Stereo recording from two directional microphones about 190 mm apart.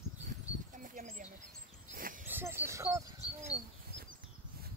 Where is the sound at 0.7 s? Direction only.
45° right (ahead or behind).